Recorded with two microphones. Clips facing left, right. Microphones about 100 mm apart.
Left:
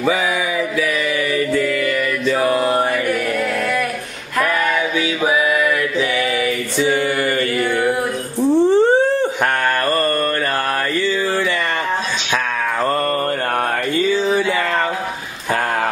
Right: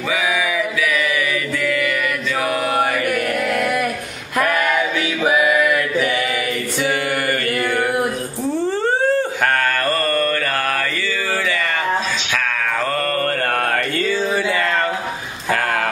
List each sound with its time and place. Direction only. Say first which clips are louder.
1.5 s mantra: left 3 dB; 35° left (ahead or behind)
2.4 s chant: left 3 dB; 30° left (ahead or behind)
7.5 s mantra: left 1 dB; 50° right (ahead or behind)
8.6 s a sound: left 7 dB; 20° left (ahead or behind)
9.4 s mantra: left 1 dB; 20° left (ahead or behind)
13.9 s mantra: left 3 dB; 15° left (ahead or behind)